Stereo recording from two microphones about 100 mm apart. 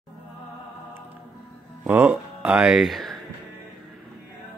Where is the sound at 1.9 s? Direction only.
15° right (ahead or behind).